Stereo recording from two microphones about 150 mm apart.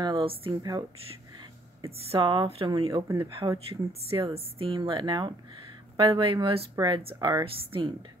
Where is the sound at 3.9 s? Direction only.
40° right (ahead or behind).